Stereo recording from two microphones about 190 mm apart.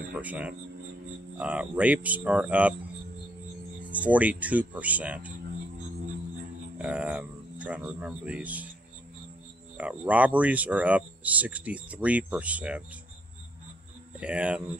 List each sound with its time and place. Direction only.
0.1 s speech: 10° right (ahead or behind)
3.8 s speech: 5° right (ahead or behind)
6.8 s speech: 5° right (ahead or behind)
9.8 s speech: 5° right (ahead or behind)
14.2 s speech: 5° right (ahead or behind)